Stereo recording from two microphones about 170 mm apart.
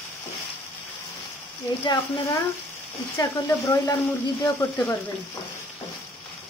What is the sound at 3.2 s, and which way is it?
Speech, 20° left (ahead or behind).